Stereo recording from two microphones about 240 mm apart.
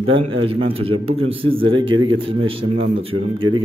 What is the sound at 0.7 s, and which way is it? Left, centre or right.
A man's voice, right.